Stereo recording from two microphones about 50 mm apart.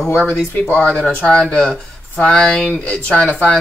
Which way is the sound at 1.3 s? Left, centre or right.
Centre.